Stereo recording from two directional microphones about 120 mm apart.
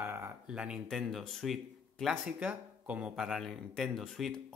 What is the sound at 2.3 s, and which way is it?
A man's voice, 10° right (ahead or behind).